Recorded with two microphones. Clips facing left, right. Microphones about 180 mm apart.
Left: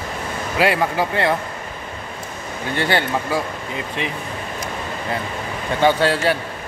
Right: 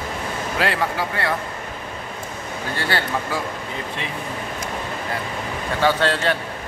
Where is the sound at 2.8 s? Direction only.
20° left (ahead or behind).